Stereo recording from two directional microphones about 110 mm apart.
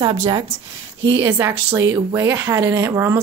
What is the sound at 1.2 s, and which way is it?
A woman's voice, 20° right (ahead or behind).